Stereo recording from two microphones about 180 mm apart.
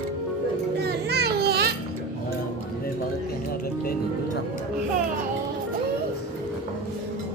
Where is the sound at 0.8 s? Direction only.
65° right (ahead or behind).